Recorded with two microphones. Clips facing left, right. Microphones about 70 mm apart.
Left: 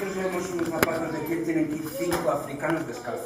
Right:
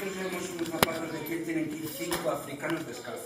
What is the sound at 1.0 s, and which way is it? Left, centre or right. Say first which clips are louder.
A man's voice: left 6 dB; centre.